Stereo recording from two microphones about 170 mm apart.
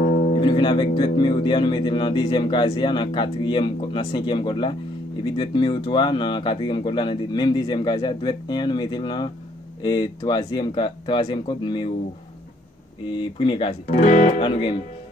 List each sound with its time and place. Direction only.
0.4 s speech: 30° left (ahead or behind)
13.1 s speech: 30° left (ahead or behind)
13.9 s speech: 45° left (ahead or behind)
14.4 s speech: 30° left (ahead or behind)